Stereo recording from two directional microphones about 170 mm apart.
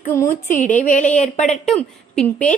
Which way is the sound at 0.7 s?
50° left (ahead or behind).